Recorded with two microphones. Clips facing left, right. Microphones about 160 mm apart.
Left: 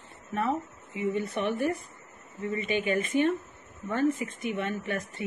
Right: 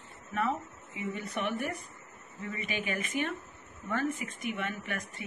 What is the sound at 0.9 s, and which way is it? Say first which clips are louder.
Speech: left 7 dB; 25° left (ahead or behind).